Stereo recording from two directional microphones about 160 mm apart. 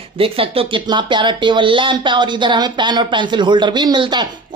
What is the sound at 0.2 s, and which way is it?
Speech, 35° right (ahead or behind).